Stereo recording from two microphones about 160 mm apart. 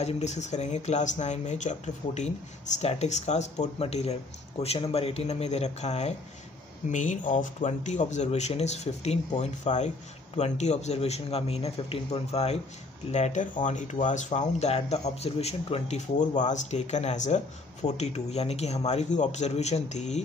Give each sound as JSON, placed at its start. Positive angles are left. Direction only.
{"t": 0.0, "sound": "speech", "side_deg": 45}